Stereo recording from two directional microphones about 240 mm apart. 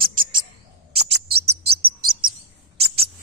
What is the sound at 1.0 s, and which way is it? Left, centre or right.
Bird, right.